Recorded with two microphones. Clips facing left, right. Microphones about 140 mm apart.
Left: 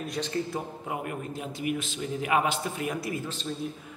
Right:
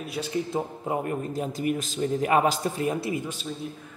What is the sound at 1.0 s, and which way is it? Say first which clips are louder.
A man's voice: right 5 dB; 40° right (ahead or behind).